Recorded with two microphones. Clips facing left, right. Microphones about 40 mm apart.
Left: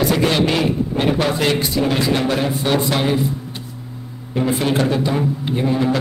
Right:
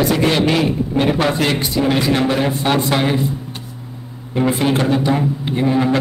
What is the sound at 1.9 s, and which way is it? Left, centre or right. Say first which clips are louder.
A man's voice: right 4 dB; centre.